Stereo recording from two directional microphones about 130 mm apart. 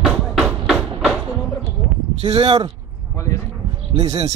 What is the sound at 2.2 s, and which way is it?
Speech, 50° right (ahead or behind).